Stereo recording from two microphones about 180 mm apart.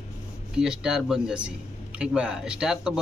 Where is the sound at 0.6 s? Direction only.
5° right (ahead or behind).